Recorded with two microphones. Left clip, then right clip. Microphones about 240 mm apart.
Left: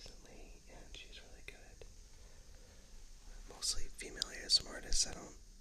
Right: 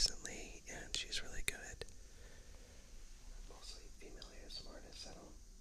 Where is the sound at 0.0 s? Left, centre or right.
Right.